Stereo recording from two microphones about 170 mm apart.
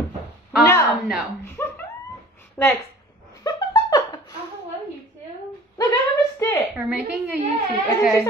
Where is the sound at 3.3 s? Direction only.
20° left (ahead or behind).